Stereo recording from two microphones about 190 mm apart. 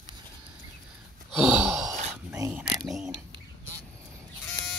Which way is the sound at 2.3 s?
15° right (ahead or behind).